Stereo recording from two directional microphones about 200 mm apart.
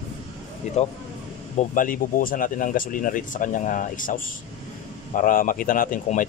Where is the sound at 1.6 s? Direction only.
45° left (ahead or behind).